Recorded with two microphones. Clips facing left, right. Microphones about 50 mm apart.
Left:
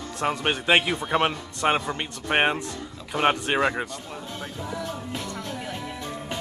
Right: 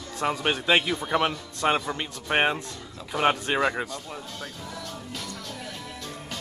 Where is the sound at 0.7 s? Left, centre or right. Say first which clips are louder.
Left 2 dB; left.